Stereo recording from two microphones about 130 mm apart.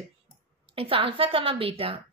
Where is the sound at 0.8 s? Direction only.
45° right (ahead or behind).